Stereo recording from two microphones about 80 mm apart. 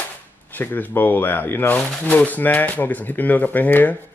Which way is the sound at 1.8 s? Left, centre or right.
Centre.